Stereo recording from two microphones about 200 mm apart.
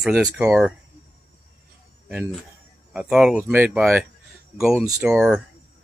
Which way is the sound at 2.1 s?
5° right (ahead or behind).